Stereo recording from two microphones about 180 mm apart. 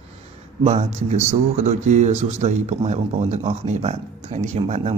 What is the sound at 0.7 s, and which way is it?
Speech, 40° right (ahead or behind).